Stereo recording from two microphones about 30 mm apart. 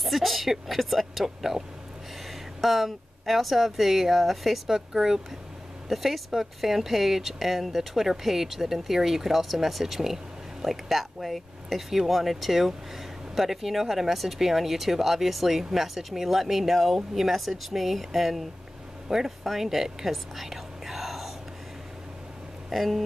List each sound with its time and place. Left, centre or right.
0.0 s speech: centre
2.6 s speech: centre
4.6 s speech: centre
5.9 s speech: centre
19.0 s speech: centre
19.4 s speech: centre
22.7 s speech: centre